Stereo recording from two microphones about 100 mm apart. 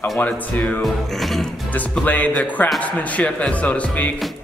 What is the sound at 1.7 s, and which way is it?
Speech, 15° left (ahead or behind).